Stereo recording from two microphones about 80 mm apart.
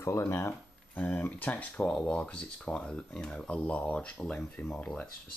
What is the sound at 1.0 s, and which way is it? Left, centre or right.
Speech, left.